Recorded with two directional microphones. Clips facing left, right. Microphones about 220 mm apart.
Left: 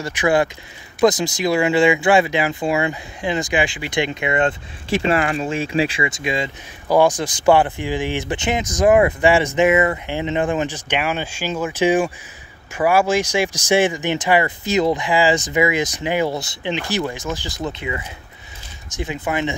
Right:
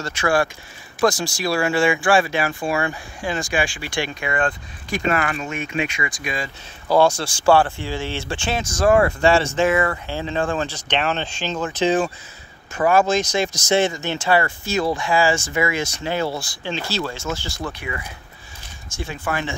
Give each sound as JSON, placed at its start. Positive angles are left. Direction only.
{"t": 0.0, "sound": "speech", "side_deg": 15}